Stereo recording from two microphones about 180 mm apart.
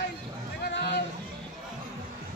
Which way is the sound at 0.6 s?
80° left.